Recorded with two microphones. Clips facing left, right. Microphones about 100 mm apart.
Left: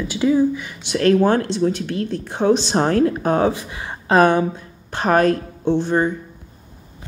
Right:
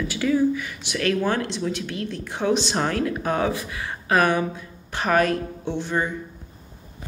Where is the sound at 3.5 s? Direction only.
25° left (ahead or behind).